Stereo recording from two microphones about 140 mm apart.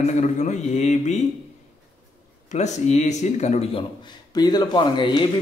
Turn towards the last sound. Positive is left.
turn(degrees=35)  # may be behind; listen again after turning